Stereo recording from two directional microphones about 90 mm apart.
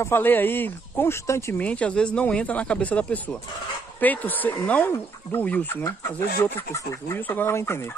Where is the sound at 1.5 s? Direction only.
15° left (ahead or behind).